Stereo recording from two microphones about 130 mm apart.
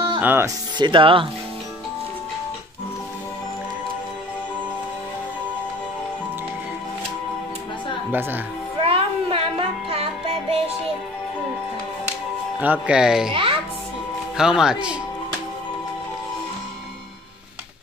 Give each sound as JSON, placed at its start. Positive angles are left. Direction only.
{"t": 0.2, "sound": "speech", "side_deg": -15}
{"t": 0.7, "sound": "speech", "side_deg": -35}
{"t": 8.1, "sound": "speech", "side_deg": -15}
{"t": 8.8, "sound": "music", "side_deg": -45}
{"t": 12.5, "sound": "speech", "side_deg": -10}
{"t": 13.3, "sound": "a child's voice", "side_deg": -40}
{"t": 14.3, "sound": "speech", "side_deg": -5}